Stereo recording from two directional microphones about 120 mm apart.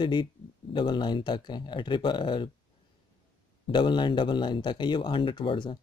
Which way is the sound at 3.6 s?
40° left (ahead or behind).